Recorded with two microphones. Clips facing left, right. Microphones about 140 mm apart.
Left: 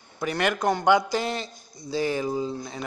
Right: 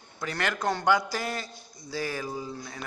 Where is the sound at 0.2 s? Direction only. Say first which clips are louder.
Left 5 dB; 15° left (ahead or behind).